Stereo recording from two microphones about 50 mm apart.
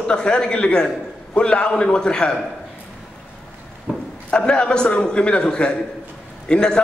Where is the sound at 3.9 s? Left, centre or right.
Right.